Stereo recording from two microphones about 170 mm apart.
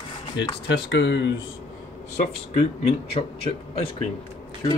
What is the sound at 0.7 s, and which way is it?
Speech, 90° left.